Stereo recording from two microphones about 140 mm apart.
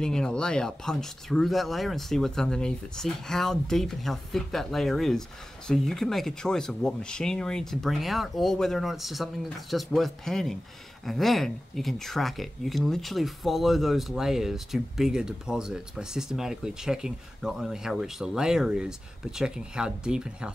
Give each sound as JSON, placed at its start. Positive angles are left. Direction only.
{"t": 0.0, "sound": "speech", "side_deg": 5}